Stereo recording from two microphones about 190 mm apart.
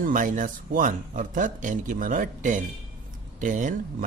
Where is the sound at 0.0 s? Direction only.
45° right (ahead or behind).